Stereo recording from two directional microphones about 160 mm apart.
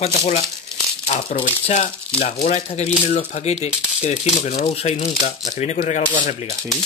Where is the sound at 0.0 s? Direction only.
45° left (ahead or behind).